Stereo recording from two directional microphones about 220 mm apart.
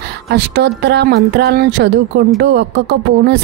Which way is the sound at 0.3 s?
50° right (ahead or behind).